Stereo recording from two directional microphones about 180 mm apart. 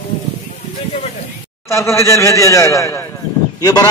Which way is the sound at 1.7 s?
15° left (ahead or behind).